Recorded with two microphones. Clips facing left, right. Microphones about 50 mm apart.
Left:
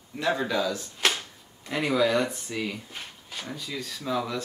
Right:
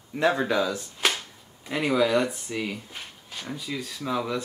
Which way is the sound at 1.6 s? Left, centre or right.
Centre.